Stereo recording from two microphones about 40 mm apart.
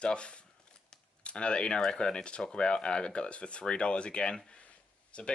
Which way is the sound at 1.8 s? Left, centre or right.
Centre.